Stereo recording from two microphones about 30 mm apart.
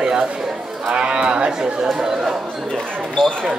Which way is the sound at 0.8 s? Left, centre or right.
Right.